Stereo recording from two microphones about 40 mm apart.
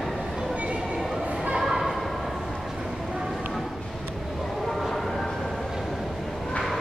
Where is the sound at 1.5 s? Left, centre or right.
Centre.